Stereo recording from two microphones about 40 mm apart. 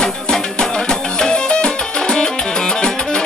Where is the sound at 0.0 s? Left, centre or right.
Centre.